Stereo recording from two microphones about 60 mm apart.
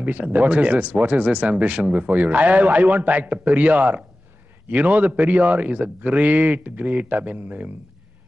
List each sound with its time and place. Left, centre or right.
0.0 s speech: right